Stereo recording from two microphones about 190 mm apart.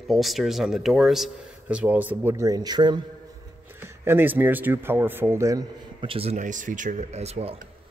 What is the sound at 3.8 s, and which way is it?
Speech, 10° right (ahead or behind).